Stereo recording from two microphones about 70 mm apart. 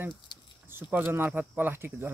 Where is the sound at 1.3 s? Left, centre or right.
Right.